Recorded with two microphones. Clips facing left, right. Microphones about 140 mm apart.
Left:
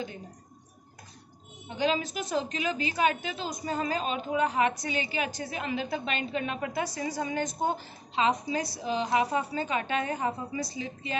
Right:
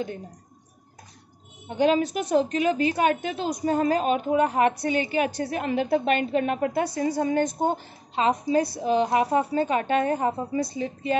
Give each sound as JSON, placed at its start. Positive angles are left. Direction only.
{"t": 1.7, "sound": "a woman's voice", "side_deg": -55}